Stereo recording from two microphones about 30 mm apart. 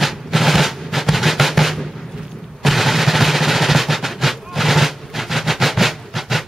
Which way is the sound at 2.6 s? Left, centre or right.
Centre.